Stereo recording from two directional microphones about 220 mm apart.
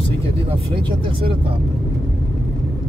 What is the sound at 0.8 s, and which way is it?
Speech, 25° right (ahead or behind).